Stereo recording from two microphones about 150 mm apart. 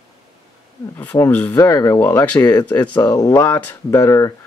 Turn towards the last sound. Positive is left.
turn(degrees=20)  # may be behind; listen again after turning